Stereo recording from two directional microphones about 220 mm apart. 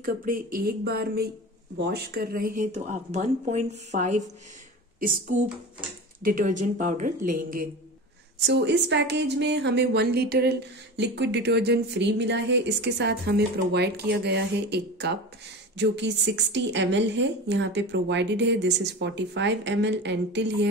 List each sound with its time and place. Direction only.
0.0 s speech: 40° right (ahead or behind)
6.2 s speech: 35° right (ahead or behind)
8.5 s speech: 50° right (ahead or behind)